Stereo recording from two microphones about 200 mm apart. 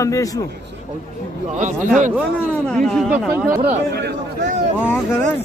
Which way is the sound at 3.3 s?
10° right (ahead or behind).